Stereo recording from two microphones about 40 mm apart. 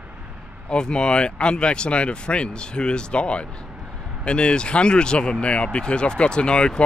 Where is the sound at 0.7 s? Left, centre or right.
Left.